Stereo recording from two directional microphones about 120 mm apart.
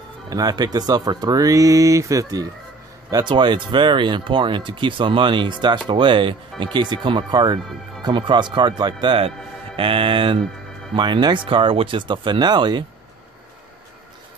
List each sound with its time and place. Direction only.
0.3 s speech: 35° right (ahead or behind)